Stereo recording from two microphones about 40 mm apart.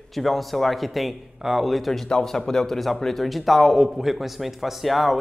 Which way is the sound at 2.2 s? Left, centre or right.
Centre.